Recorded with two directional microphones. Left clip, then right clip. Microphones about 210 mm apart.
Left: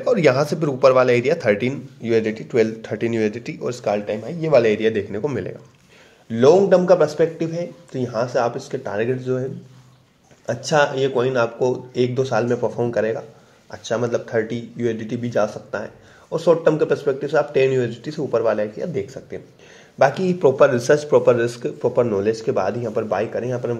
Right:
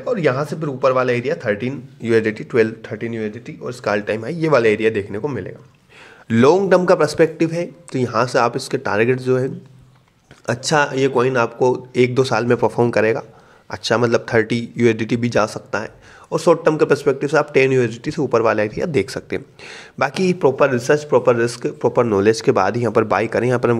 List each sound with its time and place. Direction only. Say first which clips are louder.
0.0 s speech: left 2 dB; centre (ahead or behind)
2.0 s speech: right 3 dB; 20° right (ahead or behind)
2.9 s speech: left 4 dB; 5° left (ahead or behind)
3.8 s speech: right 4 dB; 25° right (ahead or behind); by 5.5 s 5° right (ahead or behind)
6.2 s speech: even; 40° right (ahead or behind)
20.2 s speech: even; 20° right (ahead or behind); by 23.8 s 40° right (ahead or behind)